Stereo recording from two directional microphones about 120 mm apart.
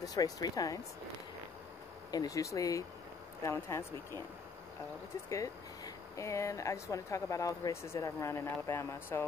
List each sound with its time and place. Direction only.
0.0 s speech: 30° left (ahead or behind)
2.0 s speech: 30° left (ahead or behind)
6.1 s speech: 25° left (ahead or behind)